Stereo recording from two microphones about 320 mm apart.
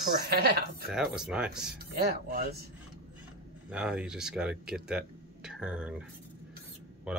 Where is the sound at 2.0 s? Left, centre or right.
Right.